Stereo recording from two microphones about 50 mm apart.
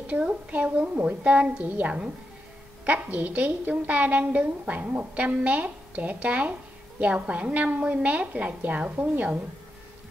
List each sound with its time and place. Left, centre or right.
0.0 s a woman's voice: right